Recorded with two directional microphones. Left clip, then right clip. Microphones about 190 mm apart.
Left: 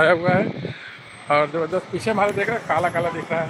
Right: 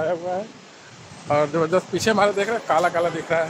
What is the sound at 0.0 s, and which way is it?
Speech, 45° left (ahead or behind).